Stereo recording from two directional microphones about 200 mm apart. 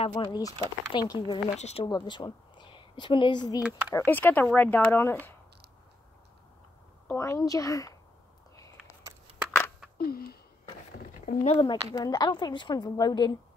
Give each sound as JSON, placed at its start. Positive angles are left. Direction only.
{"t": 0.0, "sound": "a woman's voice", "side_deg": 25}
{"t": 1.6, "sound": "speech", "side_deg": 30}
{"t": 1.9, "sound": "speech", "side_deg": 20}
{"t": 3.9, "sound": "speech", "side_deg": 10}
{"t": 7.1, "sound": "speech", "side_deg": 15}
{"t": 9.4, "sound": "a sound", "side_deg": 0}
{"t": 9.9, "sound": "gasp", "side_deg": 50}
{"t": 11.2, "sound": "a woman's voice", "side_deg": 30}